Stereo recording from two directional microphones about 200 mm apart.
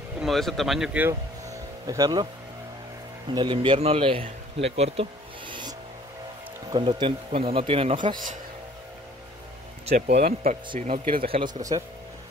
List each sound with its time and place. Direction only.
0.2 s speech: centre (ahead or behind); by 2.2 s 20° right (ahead or behind)
3.3 s speech: 25° right (ahead or behind)
5.5 s music: 20° right (ahead or behind)
6.7 s speech: 25° right (ahead or behind)
10.0 s speech: 50° right (ahead or behind)
10.8 s speech: 40° right (ahead or behind)
11.2 s speech: 30° right (ahead or behind)